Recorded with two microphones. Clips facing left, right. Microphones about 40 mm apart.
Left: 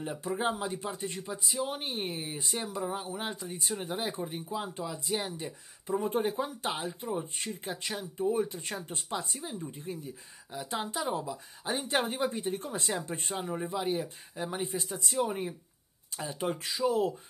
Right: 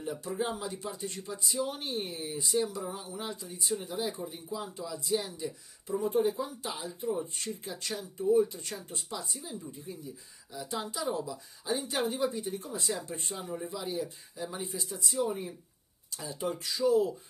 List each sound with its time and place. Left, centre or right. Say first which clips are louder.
0.0 s speech: left 2 dB; left
7.1 s speech: right 5 dB; left